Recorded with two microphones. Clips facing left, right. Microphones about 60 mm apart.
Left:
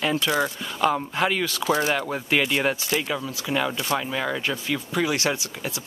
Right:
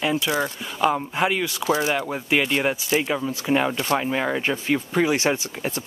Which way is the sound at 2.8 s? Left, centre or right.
Right.